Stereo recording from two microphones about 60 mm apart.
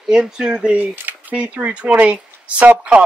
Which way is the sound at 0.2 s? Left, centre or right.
Centre.